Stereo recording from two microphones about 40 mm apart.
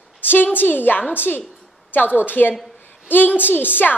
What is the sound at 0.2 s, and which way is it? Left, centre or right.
A woman's voice, left.